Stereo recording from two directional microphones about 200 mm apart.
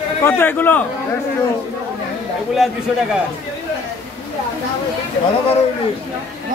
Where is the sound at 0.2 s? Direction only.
10° left (ahead or behind).